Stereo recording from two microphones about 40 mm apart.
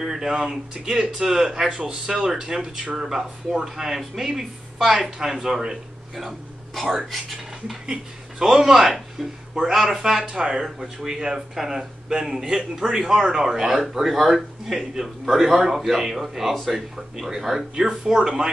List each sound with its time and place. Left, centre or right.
0.0 s speech: centre
6.1 s speech: centre
7.8 s speech: centre